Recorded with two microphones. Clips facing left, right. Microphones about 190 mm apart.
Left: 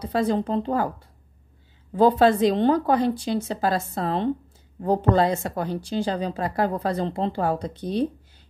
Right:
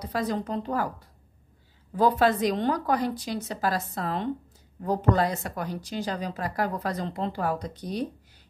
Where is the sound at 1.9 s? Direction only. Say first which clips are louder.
Left 5 dB; 25° left (ahead or behind).